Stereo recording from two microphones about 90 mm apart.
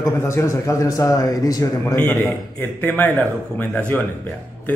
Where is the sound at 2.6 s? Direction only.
20° left (ahead or behind).